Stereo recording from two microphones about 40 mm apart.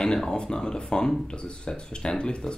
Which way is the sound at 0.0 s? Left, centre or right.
Centre.